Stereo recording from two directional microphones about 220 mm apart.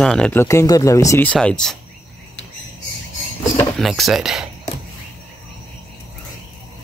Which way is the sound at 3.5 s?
Centre (ahead or behind).